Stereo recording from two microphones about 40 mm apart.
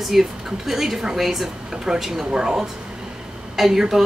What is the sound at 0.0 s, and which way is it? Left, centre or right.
Speech, centre.